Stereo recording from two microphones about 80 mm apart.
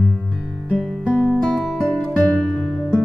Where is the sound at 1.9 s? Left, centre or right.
Centre.